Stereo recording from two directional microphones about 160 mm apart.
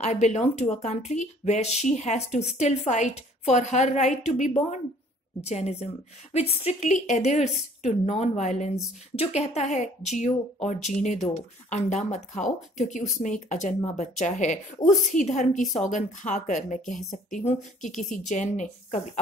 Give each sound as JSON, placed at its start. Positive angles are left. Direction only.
{"t": 0.0, "sound": "speech", "side_deg": 45}